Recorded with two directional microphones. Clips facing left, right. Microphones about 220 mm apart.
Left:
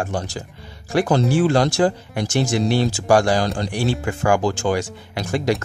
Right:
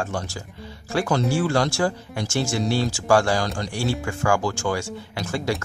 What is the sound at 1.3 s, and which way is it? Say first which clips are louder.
Speech: left 4 dB; 20° left (ahead or behind).